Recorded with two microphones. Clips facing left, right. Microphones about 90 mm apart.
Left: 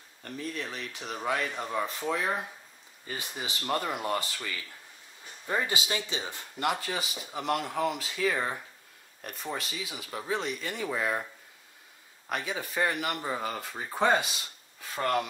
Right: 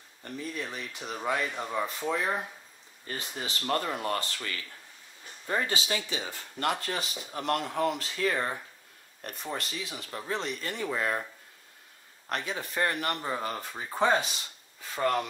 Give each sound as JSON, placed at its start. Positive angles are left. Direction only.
{"t": 0.2, "sound": "speech", "side_deg": -5}
{"t": 3.1, "sound": "speech", "side_deg": 15}
{"t": 5.5, "sound": "speech", "side_deg": 10}
{"t": 5.9, "sound": "speech", "side_deg": 20}
{"t": 6.6, "sound": "speech", "side_deg": 5}
{"t": 12.3, "sound": "speech", "side_deg": 5}